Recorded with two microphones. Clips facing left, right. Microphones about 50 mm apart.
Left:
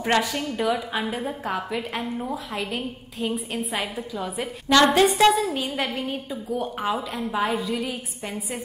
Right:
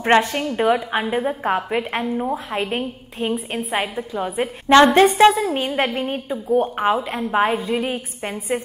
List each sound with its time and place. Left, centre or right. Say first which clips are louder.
0.0 s a woman's voice: right 6 dB; right